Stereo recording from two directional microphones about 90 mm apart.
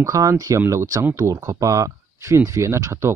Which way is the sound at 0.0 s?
40° right (ahead or behind).